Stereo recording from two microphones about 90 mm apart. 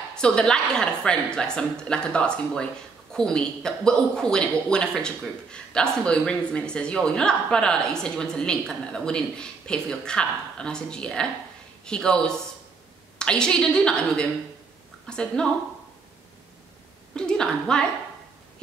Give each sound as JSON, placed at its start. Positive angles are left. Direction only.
{"t": 0.1, "sound": "speech", "side_deg": 10}
{"t": 17.1, "sound": "a woman's voice", "side_deg": 10}